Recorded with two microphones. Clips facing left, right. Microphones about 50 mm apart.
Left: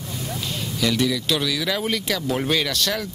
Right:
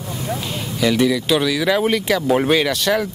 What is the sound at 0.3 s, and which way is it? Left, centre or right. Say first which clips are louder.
Speech: right 4 dB; centre.